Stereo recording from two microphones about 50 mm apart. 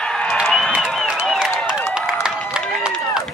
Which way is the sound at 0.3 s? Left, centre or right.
Centre.